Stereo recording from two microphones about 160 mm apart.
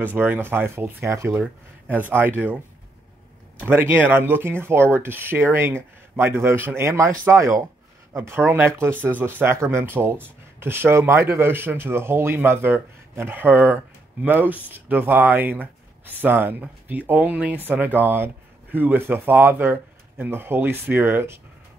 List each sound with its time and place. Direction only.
0.0 s speech: 10° right (ahead or behind)
3.6 s speech: 15° right (ahead or behind)